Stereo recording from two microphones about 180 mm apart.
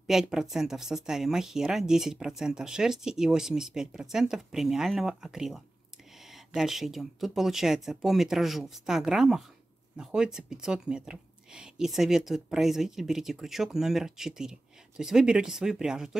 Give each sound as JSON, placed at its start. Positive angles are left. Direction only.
{"t": 0.0, "sound": "speech", "side_deg": 0}